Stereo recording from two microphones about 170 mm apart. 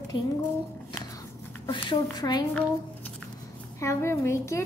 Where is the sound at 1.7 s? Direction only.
25° left (ahead or behind).